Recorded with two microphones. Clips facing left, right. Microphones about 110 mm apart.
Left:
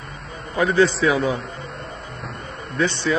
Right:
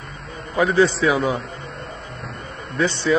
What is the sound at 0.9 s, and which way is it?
Speech, 25° right (ahead or behind).